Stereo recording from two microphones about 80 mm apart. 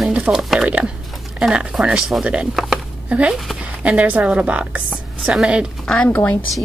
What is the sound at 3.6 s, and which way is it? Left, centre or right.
A woman's voice, centre.